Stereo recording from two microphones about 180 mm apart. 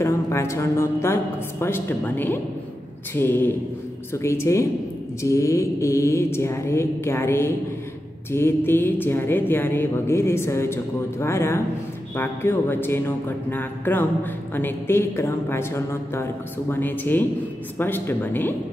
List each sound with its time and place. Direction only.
0.0 s speech: 15° left (ahead or behind)